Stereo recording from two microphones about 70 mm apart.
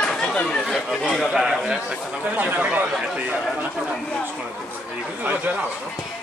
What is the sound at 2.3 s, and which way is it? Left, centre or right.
Speech, right.